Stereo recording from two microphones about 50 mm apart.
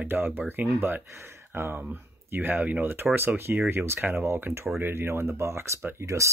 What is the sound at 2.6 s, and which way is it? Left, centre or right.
Speech, right.